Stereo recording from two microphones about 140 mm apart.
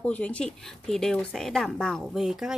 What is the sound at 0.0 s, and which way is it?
Speech, 10° left (ahead or behind).